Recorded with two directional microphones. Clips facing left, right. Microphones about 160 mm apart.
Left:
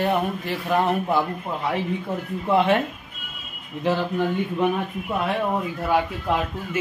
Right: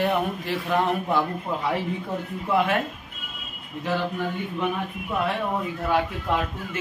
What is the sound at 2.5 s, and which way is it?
Speech, 25° left (ahead or behind).